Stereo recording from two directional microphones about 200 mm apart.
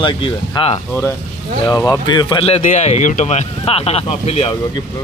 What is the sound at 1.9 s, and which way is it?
Speech, 20° left (ahead or behind).